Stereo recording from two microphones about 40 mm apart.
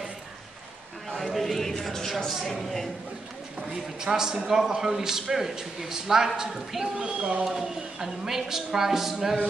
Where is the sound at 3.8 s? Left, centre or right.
Centre.